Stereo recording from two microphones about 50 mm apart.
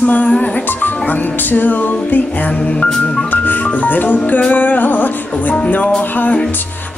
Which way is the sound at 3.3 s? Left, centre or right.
Left.